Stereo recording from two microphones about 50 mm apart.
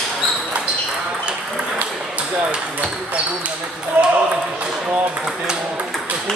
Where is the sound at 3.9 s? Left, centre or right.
Right.